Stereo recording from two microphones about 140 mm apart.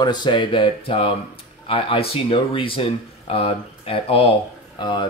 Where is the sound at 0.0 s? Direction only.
30° left (ahead or behind).